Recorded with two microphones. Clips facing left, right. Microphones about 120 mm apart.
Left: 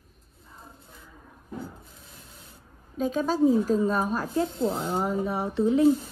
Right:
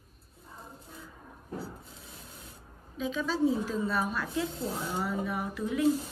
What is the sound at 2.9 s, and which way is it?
A woman's voice, 45° left (ahead or behind).